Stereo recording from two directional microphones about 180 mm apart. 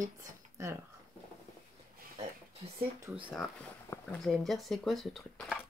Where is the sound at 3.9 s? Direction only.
5° left (ahead or behind).